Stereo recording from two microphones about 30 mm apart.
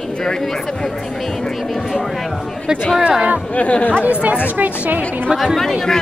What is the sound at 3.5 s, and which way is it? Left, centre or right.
Speech, left.